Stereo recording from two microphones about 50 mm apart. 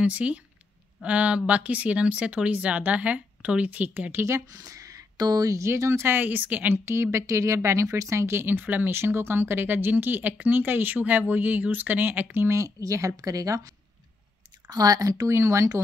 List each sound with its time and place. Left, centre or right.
0.0 s speech: right
4.1 s speech: right
5.8 s speech: right
6.0 s speech: right
6.7 s speech: right
8.4 s speech: right
8.9 s speech: right
12.4 s speech: right
15.2 s speech: right